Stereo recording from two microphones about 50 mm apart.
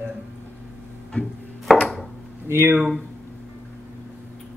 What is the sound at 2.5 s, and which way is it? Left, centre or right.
Speech, right.